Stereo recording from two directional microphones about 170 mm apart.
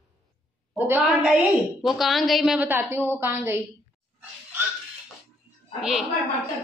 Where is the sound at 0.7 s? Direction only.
10° right (ahead or behind).